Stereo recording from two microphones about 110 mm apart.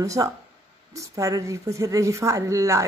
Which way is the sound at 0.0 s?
30° right (ahead or behind).